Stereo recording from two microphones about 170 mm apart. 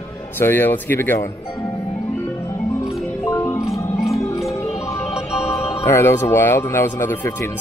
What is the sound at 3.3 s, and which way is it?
Marimba, 15° left (ahead or behind).